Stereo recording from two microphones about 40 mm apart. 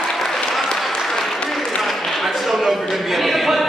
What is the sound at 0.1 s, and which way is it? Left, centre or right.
Applause, centre.